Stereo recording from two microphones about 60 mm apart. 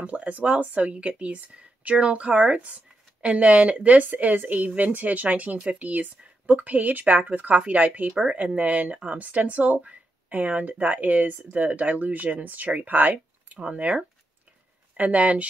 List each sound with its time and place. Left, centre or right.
0.0 s speech: right
8.1 s speech: centre
8.4 s speech: right